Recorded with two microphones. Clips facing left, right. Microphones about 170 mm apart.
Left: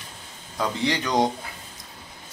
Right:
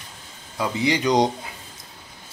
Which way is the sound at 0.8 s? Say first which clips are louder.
Right 4 dB; 15° right (ahead or behind).